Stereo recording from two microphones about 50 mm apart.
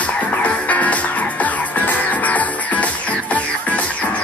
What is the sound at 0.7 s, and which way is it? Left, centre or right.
Music, left.